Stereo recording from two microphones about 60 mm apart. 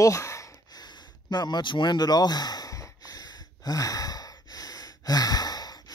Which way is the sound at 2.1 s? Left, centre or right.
Left.